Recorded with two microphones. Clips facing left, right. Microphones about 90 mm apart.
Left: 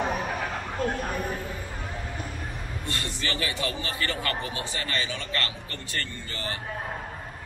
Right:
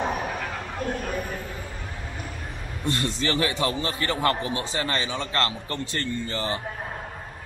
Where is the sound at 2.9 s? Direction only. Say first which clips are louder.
Right 7 dB; 30° right (ahead or behind).